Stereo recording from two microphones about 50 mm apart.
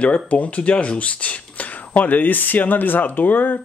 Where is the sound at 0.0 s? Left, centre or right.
Left.